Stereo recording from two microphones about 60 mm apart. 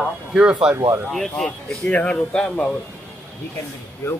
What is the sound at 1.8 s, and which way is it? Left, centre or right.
Speech, left.